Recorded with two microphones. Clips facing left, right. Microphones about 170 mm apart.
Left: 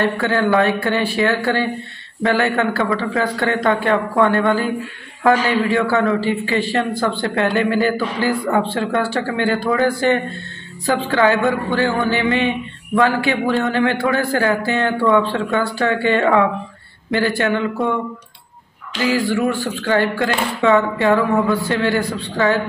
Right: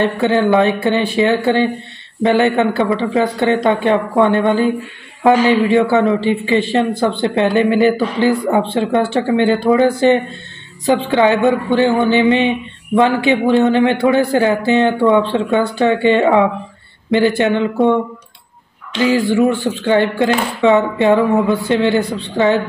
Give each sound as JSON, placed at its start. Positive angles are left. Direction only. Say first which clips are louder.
{"t": 0.0, "sound": "speech", "louder": "right 4 dB", "side_deg": -20}
{"t": 18.9, "sound": "speech", "louder": "right 5 dB", "side_deg": -20}